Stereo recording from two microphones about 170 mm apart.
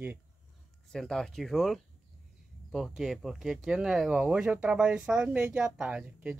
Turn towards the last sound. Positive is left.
turn(degrees=-5)  # may be behind; listen again after turning